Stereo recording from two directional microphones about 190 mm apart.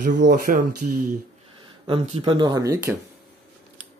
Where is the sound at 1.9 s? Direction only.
30° right (ahead or behind).